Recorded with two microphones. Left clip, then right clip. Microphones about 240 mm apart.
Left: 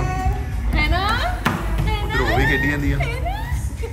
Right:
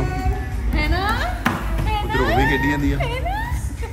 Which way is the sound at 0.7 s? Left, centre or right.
Centre.